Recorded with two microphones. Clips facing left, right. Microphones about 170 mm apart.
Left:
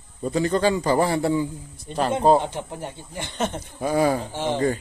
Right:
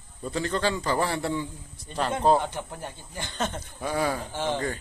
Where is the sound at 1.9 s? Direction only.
25° left (ahead or behind).